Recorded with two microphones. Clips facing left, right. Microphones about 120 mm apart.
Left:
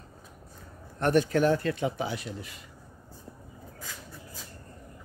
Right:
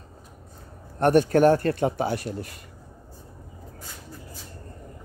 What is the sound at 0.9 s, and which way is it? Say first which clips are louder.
Speech: right 5 dB; 45° right (ahead or behind).